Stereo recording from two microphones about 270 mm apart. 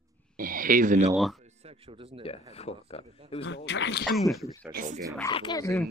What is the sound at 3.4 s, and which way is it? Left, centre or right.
Speech, left.